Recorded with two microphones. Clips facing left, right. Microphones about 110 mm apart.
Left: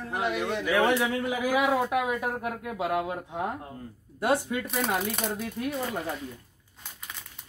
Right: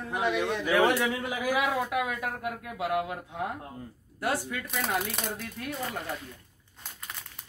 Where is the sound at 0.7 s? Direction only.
20° left (ahead or behind).